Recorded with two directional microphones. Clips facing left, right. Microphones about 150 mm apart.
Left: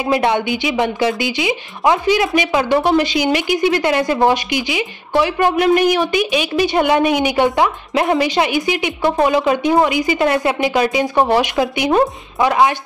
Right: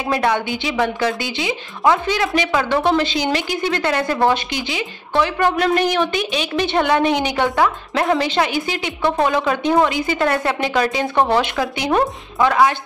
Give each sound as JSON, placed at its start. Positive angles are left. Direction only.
{"t": 0.0, "sound": "a woman's voice", "side_deg": 15}